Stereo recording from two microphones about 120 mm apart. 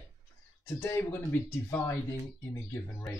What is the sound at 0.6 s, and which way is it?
Speech, 20° left (ahead or behind).